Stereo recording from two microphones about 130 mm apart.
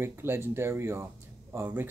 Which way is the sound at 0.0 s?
20° right (ahead or behind).